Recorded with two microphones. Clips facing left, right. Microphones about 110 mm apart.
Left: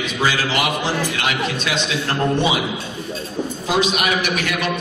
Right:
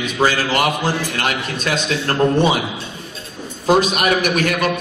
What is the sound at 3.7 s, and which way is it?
A man's voice, 45° right (ahead or behind).